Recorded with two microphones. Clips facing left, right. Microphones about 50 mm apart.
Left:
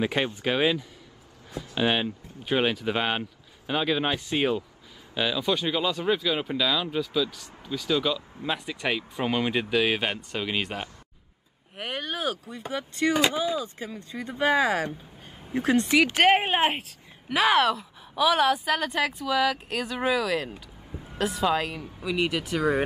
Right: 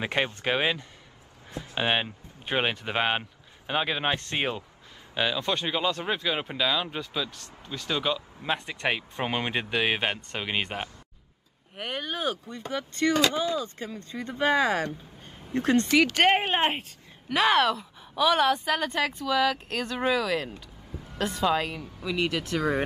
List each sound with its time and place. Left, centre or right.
0.0 s speech: centre
1.5 s a woman's voice: centre
7.3 s a woman's voice: centre
7.9 s speech: centre
11.7 s a woman's voice: centre
20.5 s vehicle: centre
21.2 s a woman's voice: centre